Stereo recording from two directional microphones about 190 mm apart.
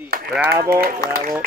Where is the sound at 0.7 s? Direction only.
50° right (ahead or behind).